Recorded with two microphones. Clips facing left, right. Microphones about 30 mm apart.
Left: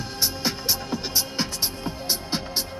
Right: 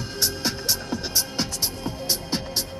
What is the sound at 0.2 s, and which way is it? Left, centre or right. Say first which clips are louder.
Music: even; centre.